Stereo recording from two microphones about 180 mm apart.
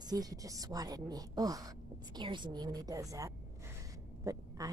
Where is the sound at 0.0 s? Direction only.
20° right (ahead or behind).